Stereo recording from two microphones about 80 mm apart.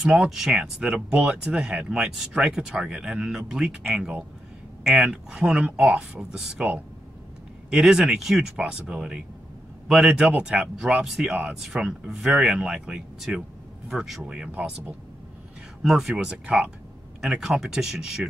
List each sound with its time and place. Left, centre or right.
0.0 s speech: centre
15.8 s speech: centre